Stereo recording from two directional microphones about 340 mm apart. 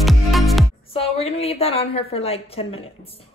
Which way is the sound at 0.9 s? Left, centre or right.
Centre.